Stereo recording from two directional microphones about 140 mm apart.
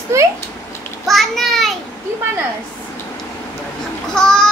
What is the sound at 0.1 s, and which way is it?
Speech, 20° right (ahead or behind).